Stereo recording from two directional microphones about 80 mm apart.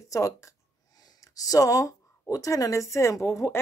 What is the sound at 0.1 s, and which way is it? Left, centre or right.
Speech, left.